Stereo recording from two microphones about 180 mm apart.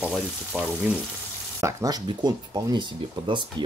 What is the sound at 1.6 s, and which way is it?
Speech, 20° right (ahead or behind).